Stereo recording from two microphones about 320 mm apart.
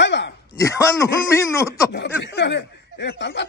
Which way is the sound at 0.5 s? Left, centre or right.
Centre.